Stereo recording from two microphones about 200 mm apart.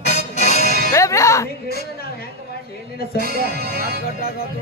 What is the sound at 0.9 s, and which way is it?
Speech, 15° left (ahead or behind).